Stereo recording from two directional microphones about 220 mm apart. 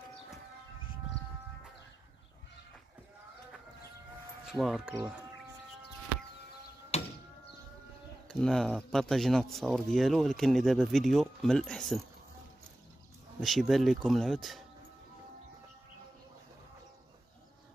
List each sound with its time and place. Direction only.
4.5 s speech: centre (ahead or behind)
6.9 s a sound: 30° left (ahead or behind)
8.3 s speech: 5° left (ahead or behind)
13.4 s speech: centre (ahead or behind)